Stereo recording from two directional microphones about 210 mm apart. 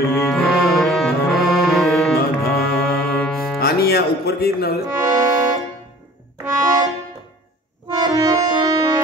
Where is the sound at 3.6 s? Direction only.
50° left (ahead or behind).